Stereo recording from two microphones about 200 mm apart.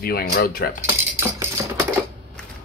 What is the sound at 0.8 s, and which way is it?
Mechanisms, 10° right (ahead or behind).